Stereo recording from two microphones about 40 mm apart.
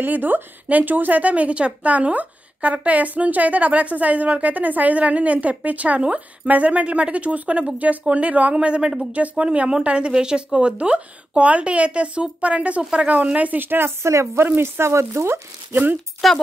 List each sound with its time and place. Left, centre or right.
0.0 s a woman's voice: right
8.5 s speech: right
9.1 s a woman's voice: right
13.6 s a woman's voice: right
14.6 s speech: right
15.7 s speech: right
16.2 s speech: centre